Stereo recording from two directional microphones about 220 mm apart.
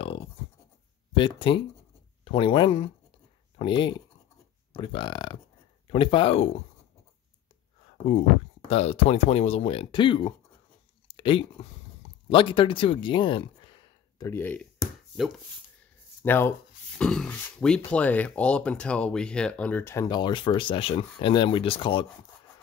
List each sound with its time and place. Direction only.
1.1 s speech: 25° left (ahead or behind)
8.6 s speech: 30° left (ahead or behind)